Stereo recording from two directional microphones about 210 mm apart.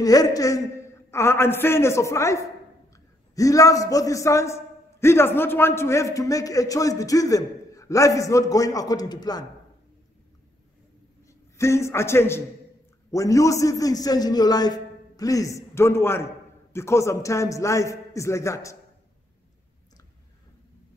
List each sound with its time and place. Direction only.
0.0 s a man's voice: 15° left (ahead or behind)
11.2 s a man's voice: 15° left (ahead or behind)